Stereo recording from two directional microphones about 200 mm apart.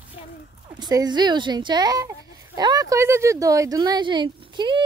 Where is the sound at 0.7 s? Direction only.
20° right (ahead or behind).